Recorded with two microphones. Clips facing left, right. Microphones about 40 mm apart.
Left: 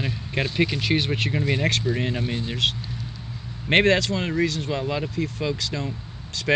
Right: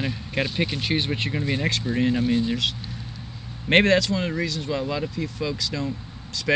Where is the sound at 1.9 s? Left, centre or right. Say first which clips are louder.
Even; right.